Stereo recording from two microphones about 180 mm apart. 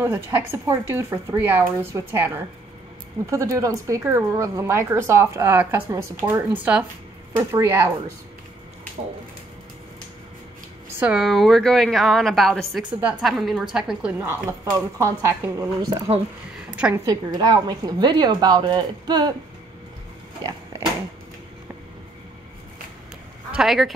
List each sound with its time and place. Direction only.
0.0 s speech: 15° right (ahead or behind)
11.0 s a woman's voice: 5° right (ahead or behind)
14.2 s a woman's voice: 15° right (ahead or behind)
17.0 s speech: 20° right (ahead or behind)
23.5 s a woman's voice: centre (ahead or behind)